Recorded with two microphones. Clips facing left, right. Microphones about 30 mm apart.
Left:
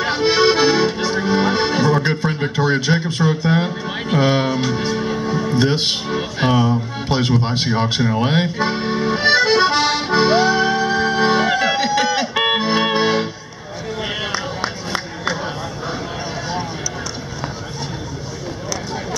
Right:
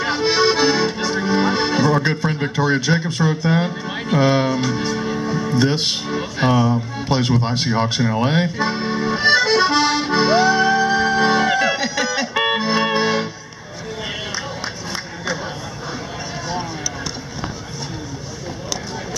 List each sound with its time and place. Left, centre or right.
0.0 s accordion: centre
6.7 s speech: centre
8.2 s accordion: centre
12.4 s music: centre
14.0 s a sound: left